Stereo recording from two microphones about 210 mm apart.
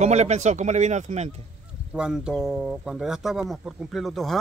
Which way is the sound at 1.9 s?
5° right (ahead or behind).